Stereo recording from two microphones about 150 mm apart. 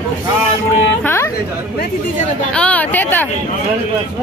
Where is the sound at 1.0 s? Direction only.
15° left (ahead or behind).